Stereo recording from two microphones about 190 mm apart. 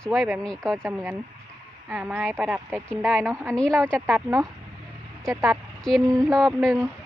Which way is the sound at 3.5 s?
5° left (ahead or behind).